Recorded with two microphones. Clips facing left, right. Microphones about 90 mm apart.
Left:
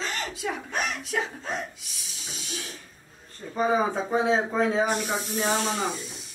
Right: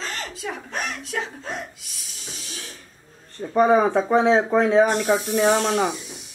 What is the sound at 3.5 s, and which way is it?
Speech, 65° right (ahead or behind).